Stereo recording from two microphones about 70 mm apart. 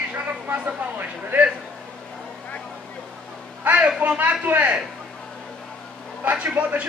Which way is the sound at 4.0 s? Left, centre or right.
Right.